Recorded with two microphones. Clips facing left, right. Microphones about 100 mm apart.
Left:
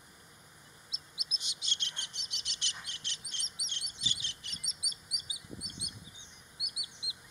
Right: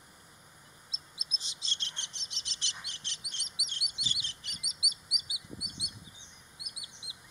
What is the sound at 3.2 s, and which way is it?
Chirp, 35° left (ahead or behind).